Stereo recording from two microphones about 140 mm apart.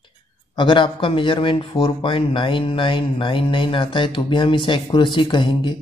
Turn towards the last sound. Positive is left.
turn(degrees=35)  # may be behind; listen again after turning